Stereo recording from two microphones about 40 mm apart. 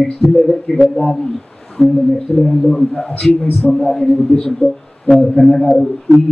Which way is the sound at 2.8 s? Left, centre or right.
Left.